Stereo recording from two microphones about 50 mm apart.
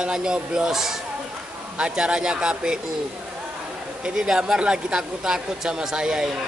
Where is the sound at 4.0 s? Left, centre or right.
Centre.